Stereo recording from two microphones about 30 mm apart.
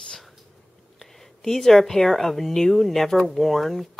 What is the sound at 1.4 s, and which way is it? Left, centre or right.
Speech, centre.